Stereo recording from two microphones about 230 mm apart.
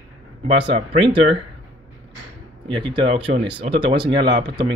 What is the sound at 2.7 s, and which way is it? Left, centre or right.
Speech, centre.